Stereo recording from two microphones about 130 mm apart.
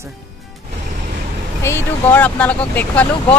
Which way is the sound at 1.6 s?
15° left (ahead or behind).